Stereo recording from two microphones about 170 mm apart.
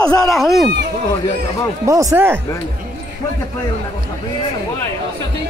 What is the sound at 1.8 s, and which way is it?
Speech, 20° right (ahead or behind).